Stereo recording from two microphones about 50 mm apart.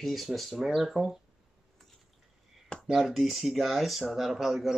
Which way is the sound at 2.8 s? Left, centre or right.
Centre.